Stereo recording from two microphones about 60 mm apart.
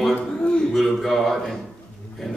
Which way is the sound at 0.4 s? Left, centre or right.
Centre.